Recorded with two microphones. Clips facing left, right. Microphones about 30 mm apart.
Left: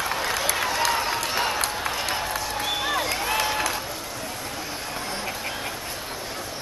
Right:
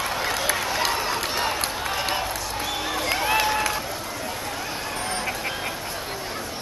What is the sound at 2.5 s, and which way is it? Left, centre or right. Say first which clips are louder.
Crowd: left 3 dB; centre.